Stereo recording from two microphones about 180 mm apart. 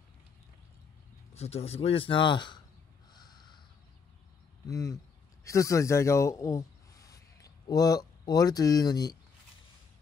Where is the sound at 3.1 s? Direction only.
25° left (ahead or behind).